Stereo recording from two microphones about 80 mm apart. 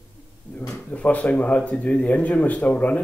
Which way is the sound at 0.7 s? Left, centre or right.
Centre.